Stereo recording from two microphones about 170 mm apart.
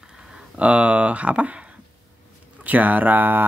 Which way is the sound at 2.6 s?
10° right (ahead or behind).